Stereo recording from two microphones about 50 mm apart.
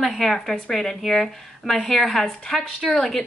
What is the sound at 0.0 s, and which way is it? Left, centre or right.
A woman's voice, centre.